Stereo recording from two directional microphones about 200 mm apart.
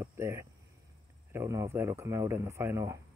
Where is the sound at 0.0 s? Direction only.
10° right (ahead or behind).